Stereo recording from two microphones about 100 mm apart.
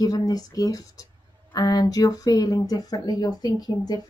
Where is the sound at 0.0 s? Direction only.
40° left (ahead or behind).